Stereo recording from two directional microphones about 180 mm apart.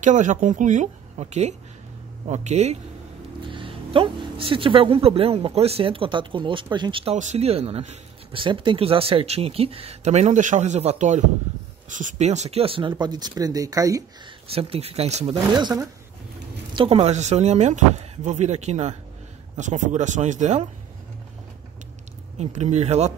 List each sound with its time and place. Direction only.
0.0 s speech: 45° right (ahead or behind); by 14.0 s 20° right (ahead or behind)
14.5 s speech: 35° right (ahead or behind)
15.5 s speech: 20° right (ahead or behind)
16.7 s speech: 35° right (ahead or behind)
22.4 s speech: 40° right (ahead or behind)